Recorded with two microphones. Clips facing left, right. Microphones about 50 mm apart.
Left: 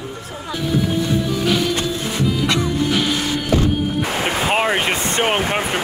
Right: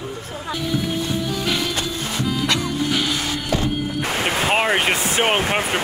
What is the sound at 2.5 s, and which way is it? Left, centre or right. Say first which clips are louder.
Music: left 3 dB; centre.